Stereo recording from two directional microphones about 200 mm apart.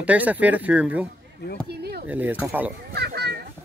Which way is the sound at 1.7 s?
55° right (ahead or behind).